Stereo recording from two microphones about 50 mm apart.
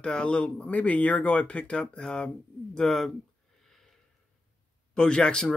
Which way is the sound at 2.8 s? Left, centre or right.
Centre.